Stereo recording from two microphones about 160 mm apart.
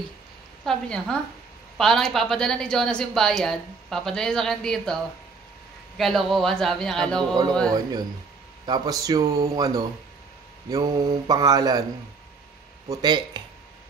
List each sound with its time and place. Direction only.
0.7 s a woman's voice: 5° left (ahead or behind)
5.9 s a woman's voice: centre (ahead or behind)
7.7 s speech: 25° right (ahead or behind)
12.8 s speech: 25° right (ahead or behind)